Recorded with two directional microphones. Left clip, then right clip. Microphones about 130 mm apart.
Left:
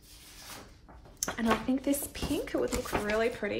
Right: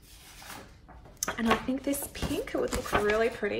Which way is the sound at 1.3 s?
55° left (ahead or behind).